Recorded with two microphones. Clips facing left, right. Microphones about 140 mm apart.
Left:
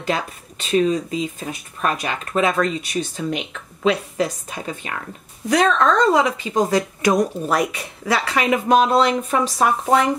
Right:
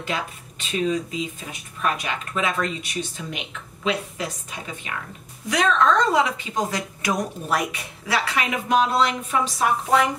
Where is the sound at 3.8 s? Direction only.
40° left (ahead or behind).